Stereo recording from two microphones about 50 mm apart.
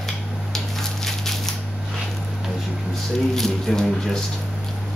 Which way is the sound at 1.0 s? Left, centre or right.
Centre.